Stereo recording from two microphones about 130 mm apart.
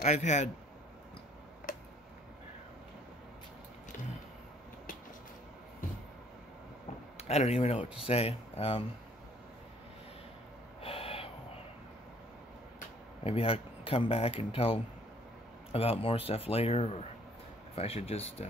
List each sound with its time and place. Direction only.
0.0 s a man's voice: 65° left (ahead or behind)
1.7 s a sound: 90° left
7.2 s speech: 55° left (ahead or behind)
10.8 s gasp: 50° left (ahead or behind)
13.2 s speech: 45° left (ahead or behind)